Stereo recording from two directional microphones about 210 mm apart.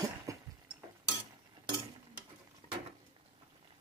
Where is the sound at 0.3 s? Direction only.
15° right (ahead or behind).